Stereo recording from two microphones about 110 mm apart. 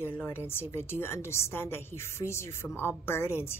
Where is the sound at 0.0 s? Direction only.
20° left (ahead or behind).